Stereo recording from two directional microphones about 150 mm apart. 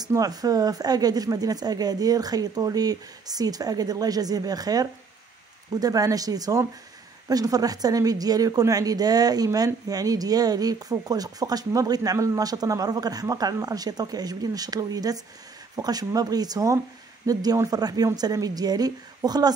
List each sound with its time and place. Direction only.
0.0 s a woman's voice: 25° right (ahead or behind)